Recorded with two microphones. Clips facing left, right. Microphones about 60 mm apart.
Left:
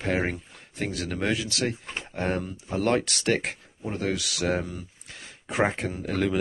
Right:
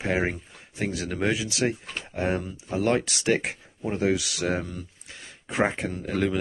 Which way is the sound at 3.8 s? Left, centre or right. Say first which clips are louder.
Right 4 dB; centre.